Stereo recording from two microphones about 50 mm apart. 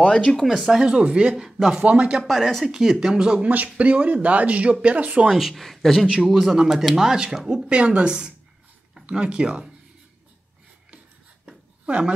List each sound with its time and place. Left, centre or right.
0.0 s speech: centre
0.5 s speech: centre
0.8 s speech: centre
1.3 s speech: centre
2.2 s speech: centre
3.4 s speech: right
5.3 s speech: centre
11.8 s speech: right